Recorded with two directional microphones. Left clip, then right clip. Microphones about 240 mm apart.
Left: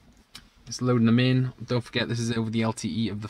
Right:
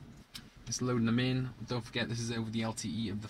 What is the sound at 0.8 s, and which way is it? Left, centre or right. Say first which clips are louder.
Speech: left 9 dB; left.